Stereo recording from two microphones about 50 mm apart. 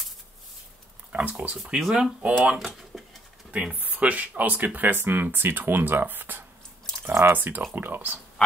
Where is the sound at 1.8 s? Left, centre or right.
Centre.